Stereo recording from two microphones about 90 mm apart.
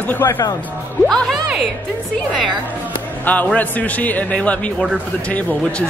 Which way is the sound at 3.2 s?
20° left (ahead or behind).